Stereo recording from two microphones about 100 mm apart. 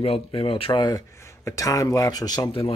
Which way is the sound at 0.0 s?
65° left (ahead or behind).